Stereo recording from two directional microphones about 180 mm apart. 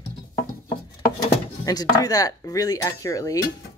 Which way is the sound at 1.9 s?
20° left (ahead or behind).